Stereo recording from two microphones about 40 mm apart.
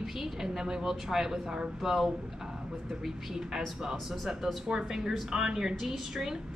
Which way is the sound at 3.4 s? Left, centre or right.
Centre.